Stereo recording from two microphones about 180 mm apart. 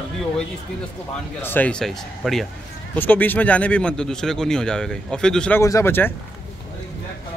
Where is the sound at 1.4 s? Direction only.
10° left (ahead or behind).